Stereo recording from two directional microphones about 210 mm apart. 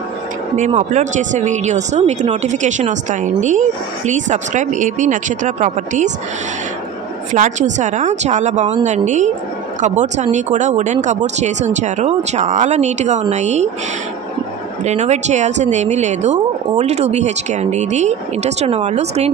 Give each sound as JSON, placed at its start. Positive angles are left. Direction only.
{"t": 0.6, "sound": "speech", "side_deg": -35}
{"t": 7.3, "sound": "speech", "side_deg": -35}
{"t": 14.9, "sound": "speech", "side_deg": -35}